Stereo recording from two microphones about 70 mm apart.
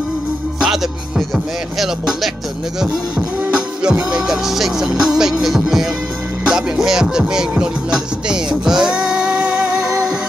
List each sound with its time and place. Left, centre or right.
0.6 s speech: centre
3.8 s music: centre